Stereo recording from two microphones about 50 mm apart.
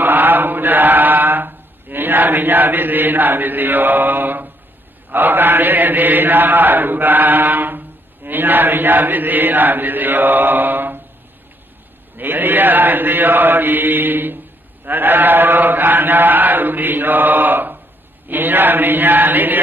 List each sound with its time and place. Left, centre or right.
0.0 s chant: right
12.2 s chant: right